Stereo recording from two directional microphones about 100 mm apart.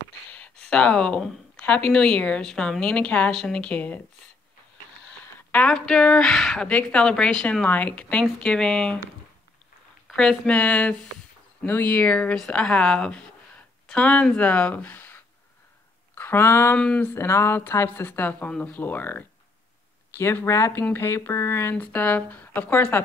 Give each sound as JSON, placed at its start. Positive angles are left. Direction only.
{"t": 0.3, "sound": "a woman's voice", "side_deg": 10}
{"t": 5.5, "sound": "a woman's voice", "side_deg": 10}
{"t": 6.7, "sound": "a woman's voice", "side_deg": 15}
{"t": 10.1, "sound": "a woman's voice", "side_deg": 10}
{"t": 16.2, "sound": "speech", "side_deg": 25}
{"t": 16.7, "sound": "a woman's voice", "side_deg": 10}